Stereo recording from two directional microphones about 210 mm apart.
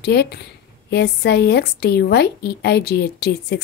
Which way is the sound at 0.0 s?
50° left (ahead or behind).